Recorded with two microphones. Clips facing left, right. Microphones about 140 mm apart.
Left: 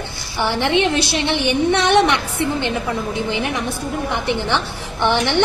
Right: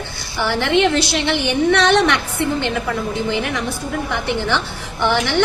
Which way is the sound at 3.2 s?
20° left (ahead or behind).